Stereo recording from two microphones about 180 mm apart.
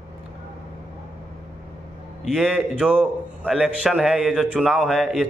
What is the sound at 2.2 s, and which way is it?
Speech, centre (ahead or behind).